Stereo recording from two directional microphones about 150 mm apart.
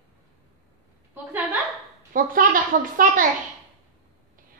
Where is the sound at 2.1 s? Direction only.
70° right (ahead or behind).